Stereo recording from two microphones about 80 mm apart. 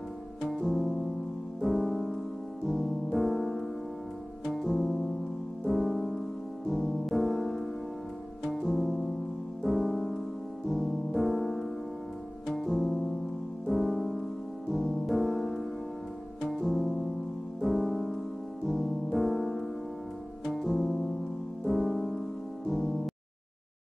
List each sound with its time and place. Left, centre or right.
0.5 s music: centre